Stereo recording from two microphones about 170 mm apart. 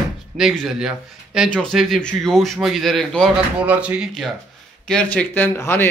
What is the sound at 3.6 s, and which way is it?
A man's voice, 5° right (ahead or behind).